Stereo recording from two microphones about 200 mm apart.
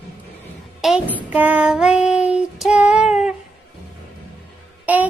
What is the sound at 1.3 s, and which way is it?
Child singing, 5° right (ahead or behind).